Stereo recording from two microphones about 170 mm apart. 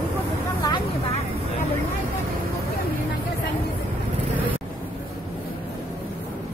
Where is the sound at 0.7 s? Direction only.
30° left (ahead or behind).